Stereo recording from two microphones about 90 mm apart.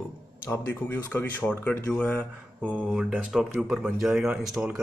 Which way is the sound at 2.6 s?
15° right (ahead or behind).